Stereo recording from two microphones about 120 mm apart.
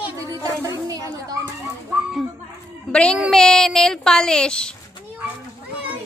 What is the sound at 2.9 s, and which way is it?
Speech, 10° left (ahead or behind).